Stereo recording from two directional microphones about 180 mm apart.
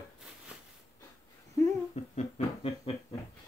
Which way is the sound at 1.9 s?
35° left (ahead or behind).